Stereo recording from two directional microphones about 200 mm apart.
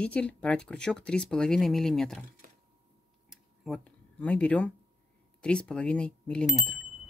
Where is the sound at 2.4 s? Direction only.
45° right (ahead or behind).